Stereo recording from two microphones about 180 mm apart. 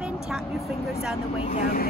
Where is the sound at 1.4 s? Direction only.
45° left (ahead or behind).